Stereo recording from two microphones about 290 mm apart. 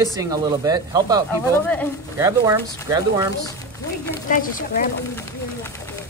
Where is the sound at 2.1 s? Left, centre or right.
Centre.